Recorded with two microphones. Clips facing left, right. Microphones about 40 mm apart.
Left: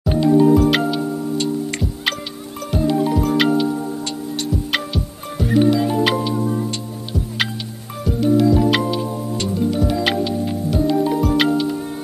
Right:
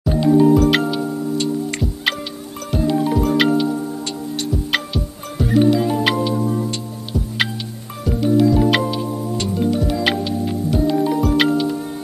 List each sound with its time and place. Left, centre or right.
0.2 s music: centre